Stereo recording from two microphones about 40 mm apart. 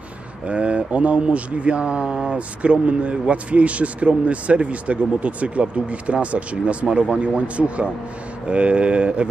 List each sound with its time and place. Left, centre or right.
0.5 s speech: right